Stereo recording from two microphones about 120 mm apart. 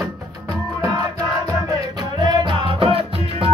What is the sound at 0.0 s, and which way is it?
Music, 30° right (ahead or behind).